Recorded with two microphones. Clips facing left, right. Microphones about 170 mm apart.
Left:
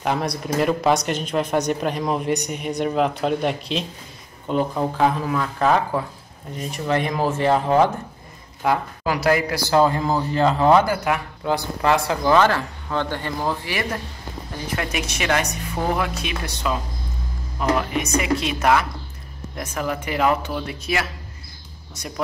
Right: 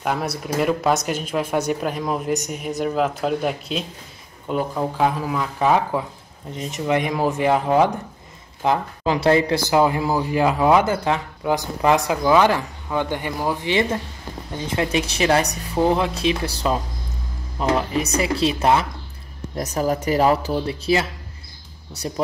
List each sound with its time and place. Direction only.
0.0 s speech: 5° right (ahead or behind)
10.9 s speech: 25° right (ahead or behind)
13.7 s speech: 25° right (ahead or behind)
15.7 s speech: 20° right (ahead or behind)